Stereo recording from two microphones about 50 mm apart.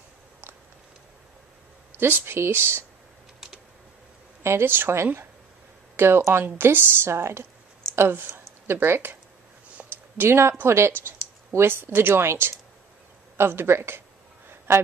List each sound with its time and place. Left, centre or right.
2.0 s a woman's voice: right
4.4 s speech: right
4.6 s a woman's voice: right
9.8 s a sound: right
10.1 s a woman's voice: right